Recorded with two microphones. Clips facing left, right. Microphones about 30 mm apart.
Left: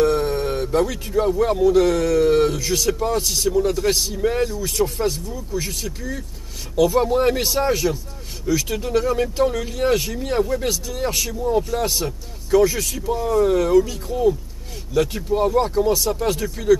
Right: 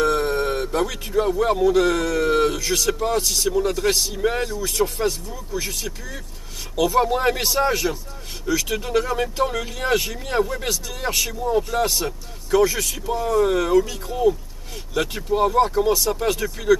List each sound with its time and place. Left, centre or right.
0.0 s a sound: centre
0.7 s speech: centre
7.1 s speech: centre
7.4 s speech: centre
7.7 s speech: centre